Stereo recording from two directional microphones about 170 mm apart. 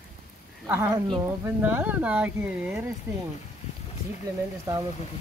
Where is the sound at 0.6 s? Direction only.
15° right (ahead or behind).